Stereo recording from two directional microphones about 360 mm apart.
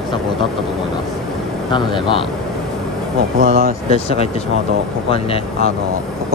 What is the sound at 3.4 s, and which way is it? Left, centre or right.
Speech, centre.